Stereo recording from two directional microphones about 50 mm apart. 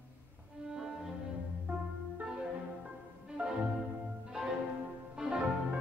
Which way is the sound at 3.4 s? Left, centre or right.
Right.